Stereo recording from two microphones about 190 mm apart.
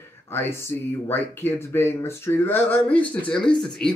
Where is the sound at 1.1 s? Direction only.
10° left (ahead or behind).